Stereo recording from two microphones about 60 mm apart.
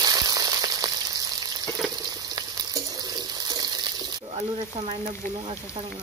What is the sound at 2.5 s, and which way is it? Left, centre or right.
Frying, right.